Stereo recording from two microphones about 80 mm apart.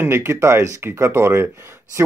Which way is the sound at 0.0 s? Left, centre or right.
Right.